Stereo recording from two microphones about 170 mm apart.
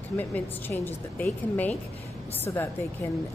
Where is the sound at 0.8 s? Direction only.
10° left (ahead or behind).